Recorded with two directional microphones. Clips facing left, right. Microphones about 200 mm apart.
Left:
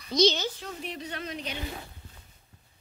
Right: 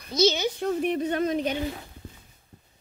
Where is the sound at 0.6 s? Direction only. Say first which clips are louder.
Right 13 dB; 55° right (ahead or behind).